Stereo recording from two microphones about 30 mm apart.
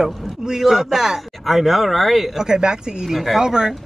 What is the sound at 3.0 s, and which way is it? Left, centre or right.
Speech, centre.